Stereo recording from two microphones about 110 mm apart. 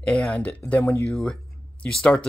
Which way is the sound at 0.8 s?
25° left (ahead or behind).